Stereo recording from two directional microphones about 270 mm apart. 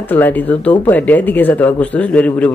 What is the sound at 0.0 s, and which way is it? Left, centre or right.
Speech, centre.